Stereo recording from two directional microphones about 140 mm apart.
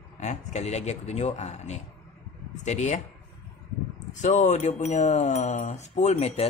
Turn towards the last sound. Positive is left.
turn(degrees=45)  # may be behind; listen again after turning